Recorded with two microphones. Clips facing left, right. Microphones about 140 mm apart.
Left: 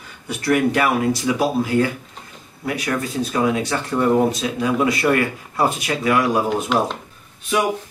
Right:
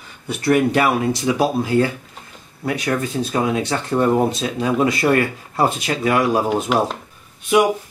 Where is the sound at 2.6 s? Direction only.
25° right (ahead or behind).